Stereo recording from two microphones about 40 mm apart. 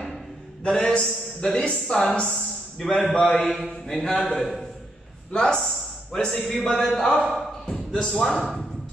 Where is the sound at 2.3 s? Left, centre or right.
Centre.